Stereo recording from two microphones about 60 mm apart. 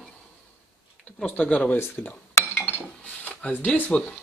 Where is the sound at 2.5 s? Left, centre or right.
Left.